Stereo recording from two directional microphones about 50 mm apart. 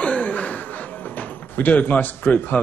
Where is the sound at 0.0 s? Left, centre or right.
Left.